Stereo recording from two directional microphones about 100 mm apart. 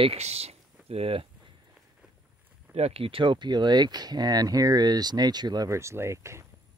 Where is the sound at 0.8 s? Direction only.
80° right.